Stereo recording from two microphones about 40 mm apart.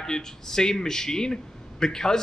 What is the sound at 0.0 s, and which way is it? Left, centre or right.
A man's voice, centre.